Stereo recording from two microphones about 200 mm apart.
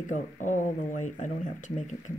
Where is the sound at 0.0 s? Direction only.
40° left (ahead or behind).